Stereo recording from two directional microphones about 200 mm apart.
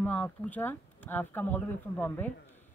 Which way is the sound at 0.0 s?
5° left (ahead or behind).